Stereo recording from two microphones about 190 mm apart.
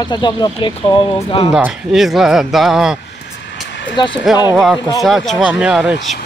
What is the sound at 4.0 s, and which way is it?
Speech, 25° left (ahead or behind).